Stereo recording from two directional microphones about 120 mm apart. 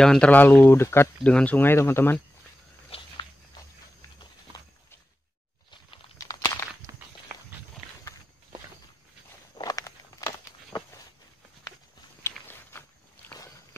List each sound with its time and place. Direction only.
0.0 s speech: 5° left (ahead or behind)
2.9 s walk: 55° left (ahead or behind)
6.1 s a sound: 25° left (ahead or behind)
6.9 s walk: 25° right (ahead or behind)
9.6 s walk: 30° left (ahead or behind)
12.2 s biting: 20° left (ahead or behind)